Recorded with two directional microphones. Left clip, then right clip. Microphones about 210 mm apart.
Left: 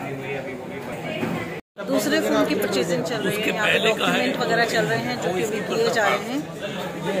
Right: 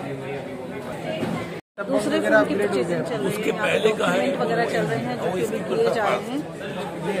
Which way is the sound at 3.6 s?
50° right (ahead or behind).